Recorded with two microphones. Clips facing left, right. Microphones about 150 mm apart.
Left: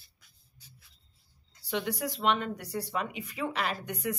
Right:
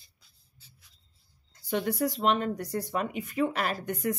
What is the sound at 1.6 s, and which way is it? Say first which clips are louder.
Speech: right 4 dB; 45° right (ahead or behind).